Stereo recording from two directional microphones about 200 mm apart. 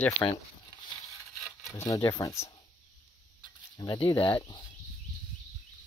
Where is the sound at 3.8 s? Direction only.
20° left (ahead or behind).